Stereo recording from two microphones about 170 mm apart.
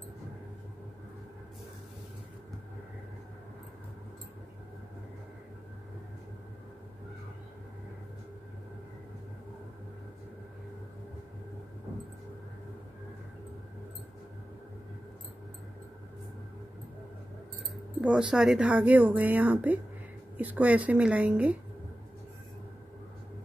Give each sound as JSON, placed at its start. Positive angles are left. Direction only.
{"t": 18.0, "sound": "speech", "side_deg": -5}